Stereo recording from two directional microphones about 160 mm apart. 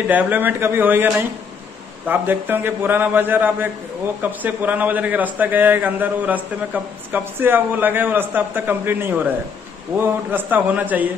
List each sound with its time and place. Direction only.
0.1 s a man's voice: 10° right (ahead or behind)